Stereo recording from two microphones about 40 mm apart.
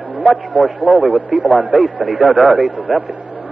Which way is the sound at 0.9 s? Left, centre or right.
Right.